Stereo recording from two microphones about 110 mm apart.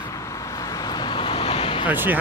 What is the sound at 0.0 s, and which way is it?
Vehicle, 30° left (ahead or behind).